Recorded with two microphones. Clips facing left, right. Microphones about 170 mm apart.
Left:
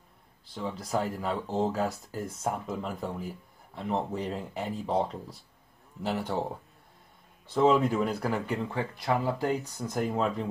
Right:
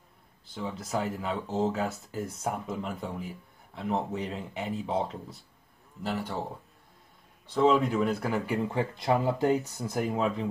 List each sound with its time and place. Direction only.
0.5 s speech: centre (ahead or behind)
7.5 s speech: centre (ahead or behind)
8.6 s speech: 20° right (ahead or behind); by 10.4 s 5° right (ahead or behind)